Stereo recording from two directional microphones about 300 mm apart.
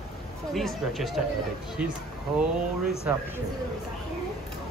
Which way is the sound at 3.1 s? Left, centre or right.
Centre.